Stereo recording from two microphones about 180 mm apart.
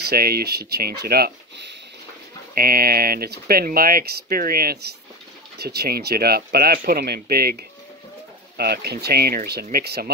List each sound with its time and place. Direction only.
0.1 s speech: 60° right (ahead or behind)